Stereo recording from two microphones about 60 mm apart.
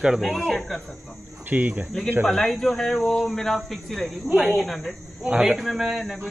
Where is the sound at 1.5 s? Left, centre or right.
Right.